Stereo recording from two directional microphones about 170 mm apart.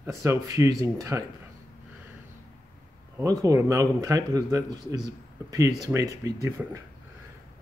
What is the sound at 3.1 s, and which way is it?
Speech, 20° right (ahead or behind).